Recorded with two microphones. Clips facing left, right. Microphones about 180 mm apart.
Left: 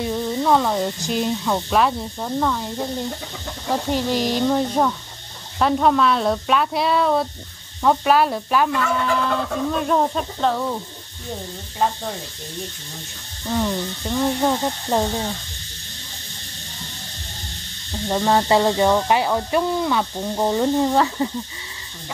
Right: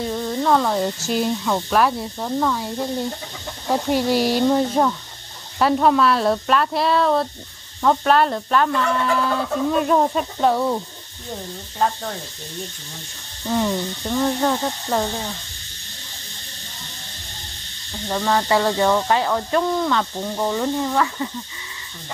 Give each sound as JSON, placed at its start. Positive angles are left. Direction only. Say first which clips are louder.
{"t": 0.0, "sound": "speech", "louder": "left 1 dB", "side_deg": 5}
{"t": 9.2, "sound": "speech", "louder": "right 1 dB", "side_deg": -5}
{"t": 11.8, "sound": "speech", "louder": "even", "side_deg": 5}
{"t": 13.5, "sound": "speech", "louder": "right 1 dB", "side_deg": 0}
{"t": 14.2, "sound": "speech", "louder": "left 1 dB", "side_deg": 15}
{"t": 18.0, "sound": "speech", "louder": "left 2 dB", "side_deg": 20}
{"t": 20.3, "sound": "cricket", "louder": "left 3 dB", "side_deg": 25}